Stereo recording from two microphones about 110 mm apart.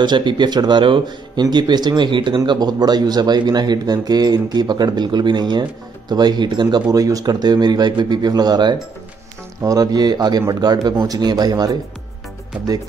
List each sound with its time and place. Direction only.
0.0 s speech: 45° right (ahead or behind)